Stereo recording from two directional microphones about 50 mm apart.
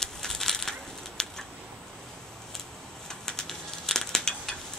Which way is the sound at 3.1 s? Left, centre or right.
Centre.